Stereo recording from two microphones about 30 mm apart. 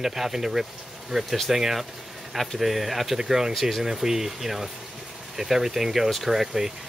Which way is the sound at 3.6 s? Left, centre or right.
Centre.